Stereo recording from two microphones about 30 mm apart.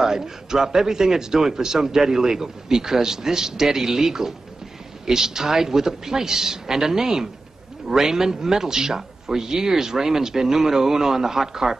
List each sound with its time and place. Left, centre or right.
0.0 s a man's voice: centre